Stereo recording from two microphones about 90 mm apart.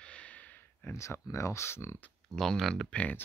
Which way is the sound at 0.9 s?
30° left (ahead or behind).